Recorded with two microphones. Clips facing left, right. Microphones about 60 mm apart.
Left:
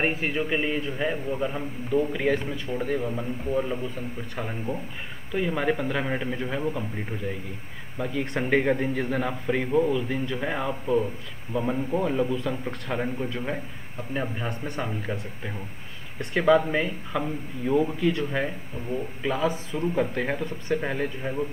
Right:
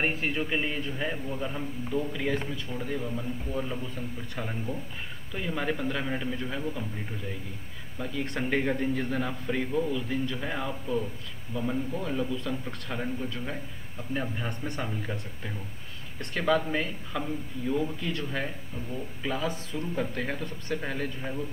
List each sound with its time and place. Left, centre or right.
0.1 s a man's voice: centre
10.7 s a man's voice: left
14.1 s a man's voice: centre
17.2 s a man's voice: left
18.1 s a man's voice: centre
18.8 s speech: left
19.2 s a man's voice: centre